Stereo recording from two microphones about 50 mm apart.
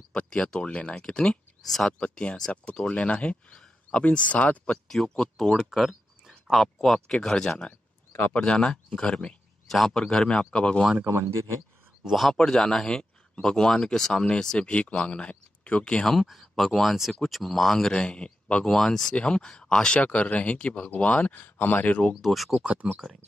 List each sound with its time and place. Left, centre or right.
0.1 s speech: left
1.7 s speech: centre
2.0 s speech: left
4.8 s speech: centre
5.6 s speech: centre
9.7 s speech: centre
12.0 s speech: centre
12.4 s speech: centre
16.1 s speech: centre; by 18.8 s left
18.8 s speech: centre
20.0 s speech: left
22.1 s speech: centre
22.8 s speech: centre